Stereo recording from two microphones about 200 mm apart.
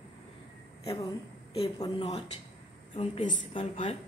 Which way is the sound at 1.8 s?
20° left (ahead or behind).